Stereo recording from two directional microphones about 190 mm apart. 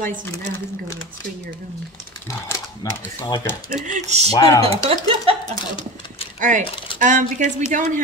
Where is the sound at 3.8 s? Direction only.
40° right (ahead or behind).